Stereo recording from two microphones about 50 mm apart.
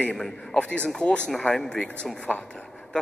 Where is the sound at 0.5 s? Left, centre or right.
Left.